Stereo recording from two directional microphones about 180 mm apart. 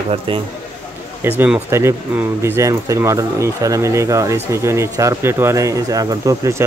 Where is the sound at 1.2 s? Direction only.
10° right (ahead or behind).